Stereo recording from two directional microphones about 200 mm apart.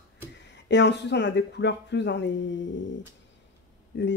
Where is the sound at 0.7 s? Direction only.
60° left (ahead or behind).